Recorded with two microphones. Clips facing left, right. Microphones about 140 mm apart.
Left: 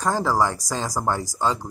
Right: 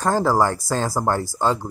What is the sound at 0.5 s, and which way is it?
Speech, 15° left (ahead or behind).